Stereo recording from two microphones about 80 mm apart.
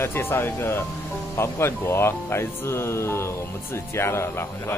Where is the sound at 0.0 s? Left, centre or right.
Left.